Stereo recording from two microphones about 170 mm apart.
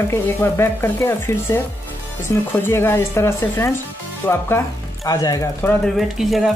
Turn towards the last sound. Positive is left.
turn(degrees=0)  # may be behind; listen again after turning